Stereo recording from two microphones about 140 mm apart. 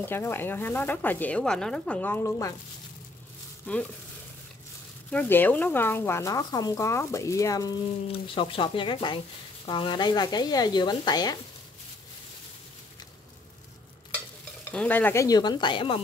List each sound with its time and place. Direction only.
0.0 s speech: 15° left (ahead or behind)
3.7 s speech: 10° left (ahead or behind)
5.1 s speech: 10° left (ahead or behind)
8.1 s speech: 40° left (ahead or behind)
14.7 s speech: 10° left (ahead or behind)
15.2 s speech: 30° left (ahead or behind)